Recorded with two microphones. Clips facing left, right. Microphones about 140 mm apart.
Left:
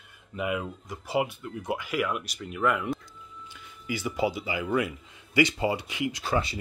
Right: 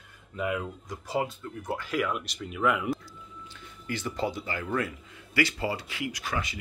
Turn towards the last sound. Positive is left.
turn(degrees=30)  # may be behind; listen again after turning